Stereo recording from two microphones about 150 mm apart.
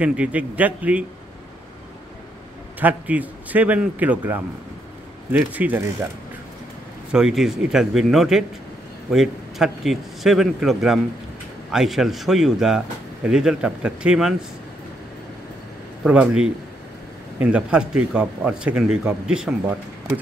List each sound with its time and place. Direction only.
0.0 s speech: 10° right (ahead or behind)
2.8 s speech: 10° right (ahead or behind)
5.5 s speech: 10° right (ahead or behind)
7.1 s speech: 5° right (ahead or behind)
16.0 s speech: 5° right (ahead or behind)